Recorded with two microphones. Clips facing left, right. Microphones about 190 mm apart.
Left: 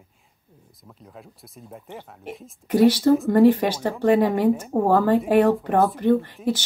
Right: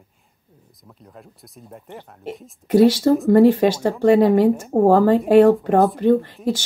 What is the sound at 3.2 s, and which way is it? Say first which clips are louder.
Speech: right 7 dB; 15° right (ahead or behind).